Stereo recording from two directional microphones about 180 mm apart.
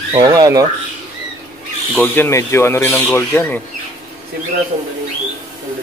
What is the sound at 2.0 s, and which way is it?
Speech, 10° left (ahead or behind).